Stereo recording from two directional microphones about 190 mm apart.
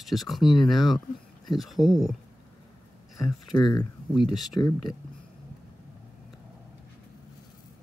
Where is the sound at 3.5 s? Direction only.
20° left (ahead or behind).